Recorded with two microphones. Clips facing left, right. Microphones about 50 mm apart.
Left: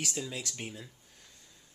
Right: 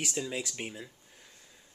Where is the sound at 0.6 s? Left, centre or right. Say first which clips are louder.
Right 2 dB; centre.